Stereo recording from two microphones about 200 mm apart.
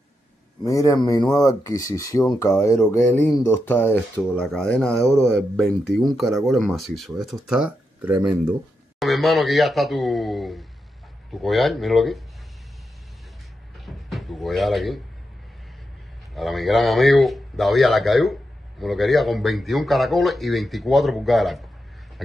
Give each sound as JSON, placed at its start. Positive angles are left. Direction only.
{"t": 0.7, "sound": "a man's voice", "side_deg": 15}
{"t": 13.7, "sound": "cupboard open or close", "side_deg": 0}
{"t": 16.3, "sound": "a man's voice", "side_deg": 0}